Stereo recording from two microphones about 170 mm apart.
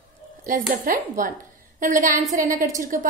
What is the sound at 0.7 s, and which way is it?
A woman's voice, 50° right (ahead or behind).